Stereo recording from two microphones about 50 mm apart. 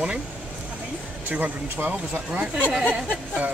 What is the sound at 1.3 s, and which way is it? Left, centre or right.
Speech, right.